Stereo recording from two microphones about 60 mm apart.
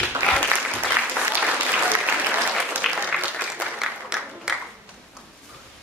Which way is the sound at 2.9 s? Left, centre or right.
Centre.